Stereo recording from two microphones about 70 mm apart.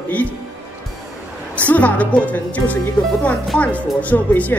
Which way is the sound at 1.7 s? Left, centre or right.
Left.